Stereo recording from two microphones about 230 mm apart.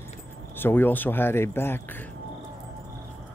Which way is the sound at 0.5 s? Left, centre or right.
Centre.